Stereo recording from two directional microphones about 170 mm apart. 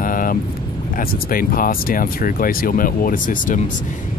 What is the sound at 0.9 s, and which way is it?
Speech, 55° left (ahead or behind).